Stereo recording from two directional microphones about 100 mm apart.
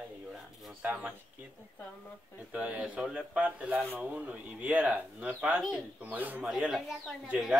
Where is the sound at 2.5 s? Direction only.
10° right (ahead or behind).